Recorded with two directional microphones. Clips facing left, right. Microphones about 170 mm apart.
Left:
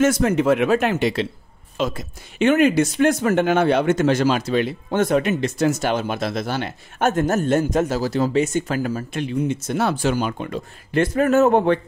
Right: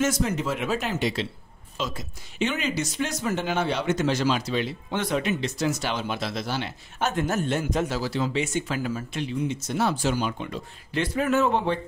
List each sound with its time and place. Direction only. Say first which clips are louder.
0.0 s speech: left 8 dB; 60° left (ahead or behind)